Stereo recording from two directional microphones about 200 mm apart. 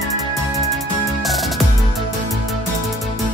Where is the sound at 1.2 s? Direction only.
Centre (ahead or behind).